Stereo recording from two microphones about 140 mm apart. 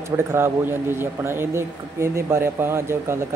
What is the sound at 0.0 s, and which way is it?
Speech, 20° right (ahead or behind).